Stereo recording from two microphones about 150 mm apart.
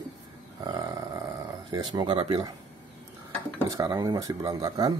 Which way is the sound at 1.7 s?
30° right (ahead or behind).